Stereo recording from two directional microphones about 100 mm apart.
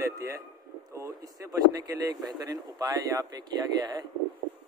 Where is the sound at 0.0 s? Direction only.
35° right (ahead or behind).